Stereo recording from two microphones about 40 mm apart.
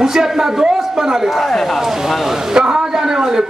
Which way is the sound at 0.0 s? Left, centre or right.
Centre.